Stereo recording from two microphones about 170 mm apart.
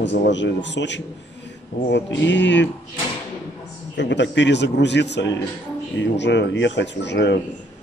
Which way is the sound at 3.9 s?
90° left.